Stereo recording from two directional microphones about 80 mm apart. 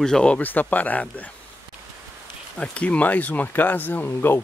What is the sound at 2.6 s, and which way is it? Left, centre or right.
Speech, centre.